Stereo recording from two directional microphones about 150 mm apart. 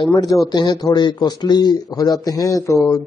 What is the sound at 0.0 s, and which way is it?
A man's voice, 25° left (ahead or behind).